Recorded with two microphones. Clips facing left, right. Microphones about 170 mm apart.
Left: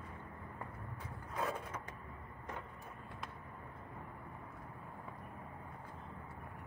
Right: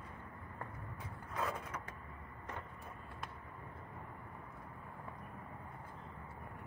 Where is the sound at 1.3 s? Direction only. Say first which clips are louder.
Left 1 dB; 20° left (ahead or behind).